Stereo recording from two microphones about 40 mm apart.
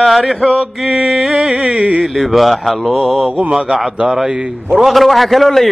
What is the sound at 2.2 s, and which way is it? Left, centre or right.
A man's voice, centre.